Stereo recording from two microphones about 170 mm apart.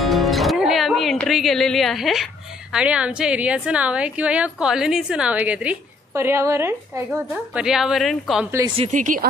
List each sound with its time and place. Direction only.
0.0 s music: centre (ahead or behind)
2.7 s a woman's voice: 5° right (ahead or behind)
7.1 s a woman's voice: centre (ahead or behind)
8.5 s a woman's voice: 15° right (ahead or behind)
8.9 s speech: 50° right (ahead or behind)